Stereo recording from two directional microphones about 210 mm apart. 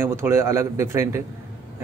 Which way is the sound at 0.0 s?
10° right (ahead or behind).